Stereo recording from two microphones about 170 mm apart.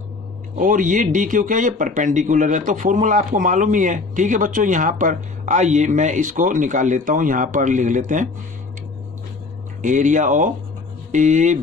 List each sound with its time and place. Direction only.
0.6 s speech: 50° right (ahead or behind)
9.8 s speech: 50° right (ahead or behind)